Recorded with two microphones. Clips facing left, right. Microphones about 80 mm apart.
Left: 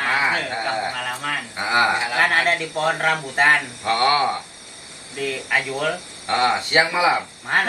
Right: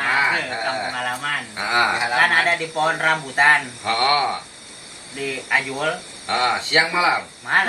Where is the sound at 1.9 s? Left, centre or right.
Right.